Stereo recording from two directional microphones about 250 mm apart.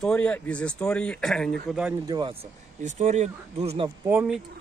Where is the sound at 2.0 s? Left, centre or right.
Centre.